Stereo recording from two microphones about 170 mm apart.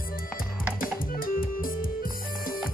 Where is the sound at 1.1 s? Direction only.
55° left (ahead or behind).